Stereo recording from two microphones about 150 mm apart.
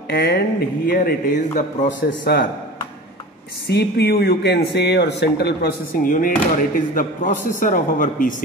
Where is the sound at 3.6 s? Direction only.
90° left; by 8.4 s 65° left (ahead or behind).